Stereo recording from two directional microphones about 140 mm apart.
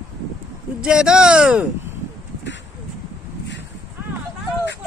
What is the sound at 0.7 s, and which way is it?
Speech, 5° right (ahead or behind).